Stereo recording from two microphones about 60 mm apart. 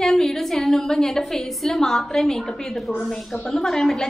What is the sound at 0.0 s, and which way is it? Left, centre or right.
A woman's voice, centre.